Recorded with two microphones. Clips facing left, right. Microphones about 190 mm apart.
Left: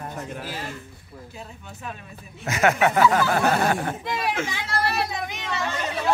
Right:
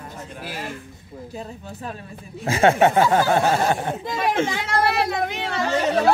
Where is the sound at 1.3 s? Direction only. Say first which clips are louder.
Right 8 dB; 35° right (ahead or behind).